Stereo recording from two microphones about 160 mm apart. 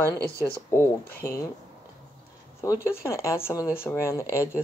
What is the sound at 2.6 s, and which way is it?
Speech, 20° left (ahead or behind).